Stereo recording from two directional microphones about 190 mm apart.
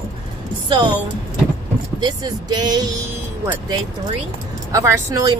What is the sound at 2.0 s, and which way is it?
Speech, 20° right (ahead or behind).